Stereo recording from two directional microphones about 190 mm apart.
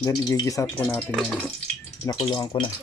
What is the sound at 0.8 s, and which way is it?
Speech, 5° left (ahead or behind).